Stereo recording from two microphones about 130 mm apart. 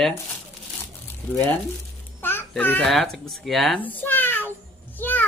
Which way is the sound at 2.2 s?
15° left (ahead or behind).